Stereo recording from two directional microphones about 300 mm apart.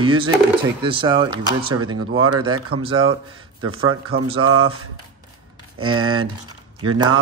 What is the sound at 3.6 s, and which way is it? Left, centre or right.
Speech, right.